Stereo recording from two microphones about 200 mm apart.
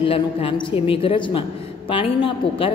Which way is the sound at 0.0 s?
25° left (ahead or behind).